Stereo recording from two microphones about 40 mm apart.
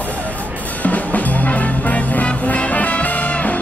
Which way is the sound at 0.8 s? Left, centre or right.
Left.